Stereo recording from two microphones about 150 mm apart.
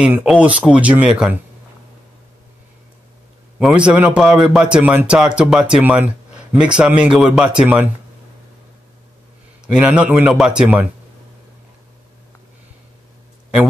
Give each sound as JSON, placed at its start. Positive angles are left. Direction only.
{"t": 0.0, "sound": "a man's voice", "side_deg": -5}
{"t": 3.5, "sound": "a man's voice", "side_deg": -10}
{"t": 9.7, "sound": "a man's voice", "side_deg": -10}